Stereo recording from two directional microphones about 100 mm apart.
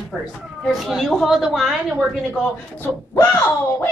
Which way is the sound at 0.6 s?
Centre (ahead or behind).